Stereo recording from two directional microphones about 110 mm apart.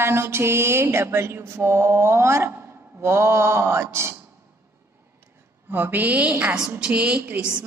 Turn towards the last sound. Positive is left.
turn(degrees=-15)  # may be behind; listen again after turning